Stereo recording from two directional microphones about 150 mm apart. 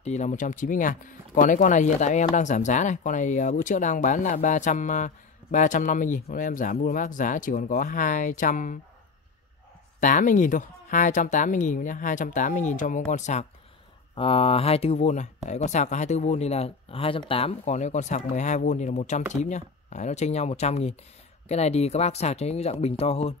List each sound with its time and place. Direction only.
0.0 s speech: 50° left (ahead or behind)
9.9 s speech: 60° left (ahead or behind)
14.1 s speech: 40° left (ahead or behind)